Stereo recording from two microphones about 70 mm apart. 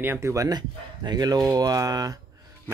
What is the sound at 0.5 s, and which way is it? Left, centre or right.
Speech, right.